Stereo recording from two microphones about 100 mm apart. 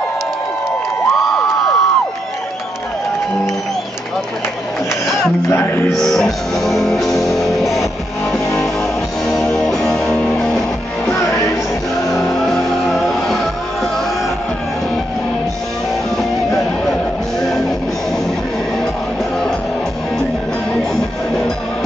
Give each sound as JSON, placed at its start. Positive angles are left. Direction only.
{"t": 1.1, "sound": "a sound", "side_deg": 0}
{"t": 5.5, "sound": "speech", "side_deg": 20}
{"t": 5.9, "sound": "music", "side_deg": 5}
{"t": 9.3, "sound": "music", "side_deg": 5}
{"t": 11.1, "sound": "music", "side_deg": 30}
{"t": 12.1, "sound": "music", "side_deg": 5}
{"t": 16.8, "sound": "music", "side_deg": 0}